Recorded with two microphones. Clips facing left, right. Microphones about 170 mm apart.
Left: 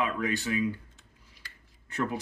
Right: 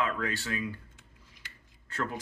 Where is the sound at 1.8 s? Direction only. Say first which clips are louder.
Left 3 dB; 20° left (ahead or behind).